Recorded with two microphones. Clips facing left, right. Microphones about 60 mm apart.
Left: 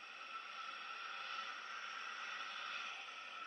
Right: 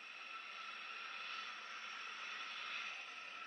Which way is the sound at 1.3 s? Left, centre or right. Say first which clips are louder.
Left 2 dB; left.